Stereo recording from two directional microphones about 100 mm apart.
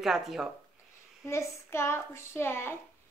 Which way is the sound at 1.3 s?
30° left (ahead or behind).